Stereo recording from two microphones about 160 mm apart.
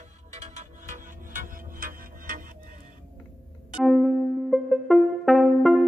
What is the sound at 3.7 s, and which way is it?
Music, centre (ahead or behind).